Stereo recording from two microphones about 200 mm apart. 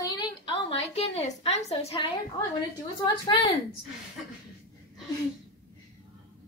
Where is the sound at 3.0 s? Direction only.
25° left (ahead or behind).